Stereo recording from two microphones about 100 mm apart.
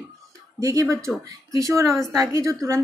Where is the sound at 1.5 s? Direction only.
35° right (ahead or behind).